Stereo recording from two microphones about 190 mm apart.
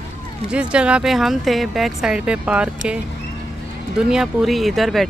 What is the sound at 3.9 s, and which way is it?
Speech, 5° right (ahead or behind).